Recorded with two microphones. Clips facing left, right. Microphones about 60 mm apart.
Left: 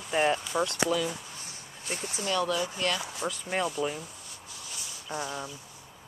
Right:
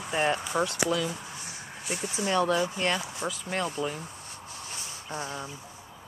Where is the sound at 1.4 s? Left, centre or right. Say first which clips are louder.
Right 3 dB; left.